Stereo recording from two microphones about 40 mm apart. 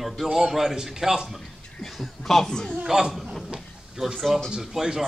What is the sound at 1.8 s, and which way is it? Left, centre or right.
Speech, centre.